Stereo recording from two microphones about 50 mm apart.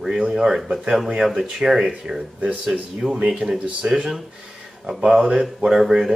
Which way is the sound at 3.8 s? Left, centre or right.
Right.